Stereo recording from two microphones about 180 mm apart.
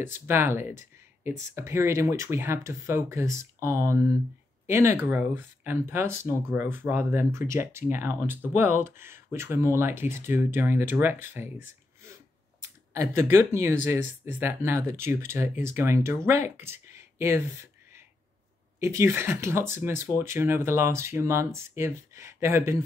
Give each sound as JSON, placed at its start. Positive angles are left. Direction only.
{"t": 0.3, "sound": "speech", "side_deg": -15}
{"t": 12.6, "sound": "speech", "side_deg": -15}